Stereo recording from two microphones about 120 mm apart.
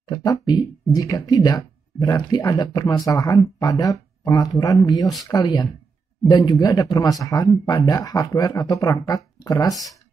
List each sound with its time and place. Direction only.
0.0 s speech: 35° left (ahead or behind)